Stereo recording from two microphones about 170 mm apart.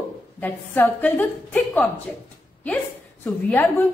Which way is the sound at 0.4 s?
10° left (ahead or behind).